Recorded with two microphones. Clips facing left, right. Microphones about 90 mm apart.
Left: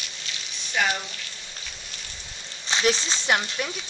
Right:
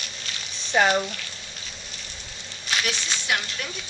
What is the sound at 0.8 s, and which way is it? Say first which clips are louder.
Speech: right 5 dB; 35° right (ahead or behind).